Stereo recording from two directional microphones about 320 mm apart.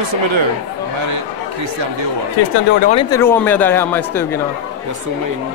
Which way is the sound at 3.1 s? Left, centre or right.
Centre.